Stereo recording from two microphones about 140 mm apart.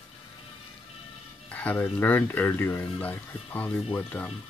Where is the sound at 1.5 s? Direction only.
10° left (ahead or behind).